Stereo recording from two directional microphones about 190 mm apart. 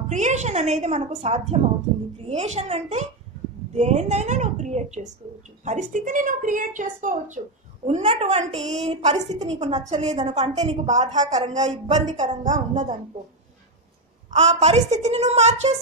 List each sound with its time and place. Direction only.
0.1 s a woman's voice: 40° right (ahead or behind)
10.3 s a woman's voice: 20° right (ahead or behind)
10.6 s a woman's voice: 35° right (ahead or behind)
14.3 s a woman's voice: 35° right (ahead or behind)